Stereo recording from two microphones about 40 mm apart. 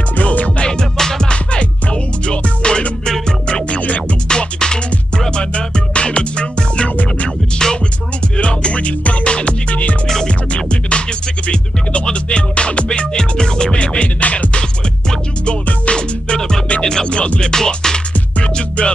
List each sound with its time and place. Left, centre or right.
0.1 s music: left
0.6 s music: centre
1.3 s music: left
3.1 s music: centre; by 14.6 s left
15.8 s music: left